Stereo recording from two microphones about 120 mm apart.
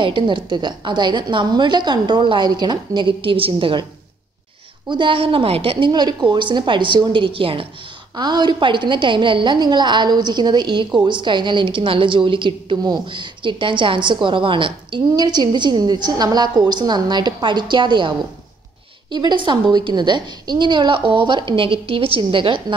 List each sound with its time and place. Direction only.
0.0 s a woman's voice: 45° right (ahead or behind)
4.8 s a woman's voice: 40° right (ahead or behind)
8.2 s a woman's voice: 35° right (ahead or behind)